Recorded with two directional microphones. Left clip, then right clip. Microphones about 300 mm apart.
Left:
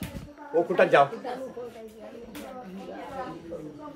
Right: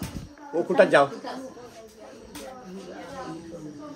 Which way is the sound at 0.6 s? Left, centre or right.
Right.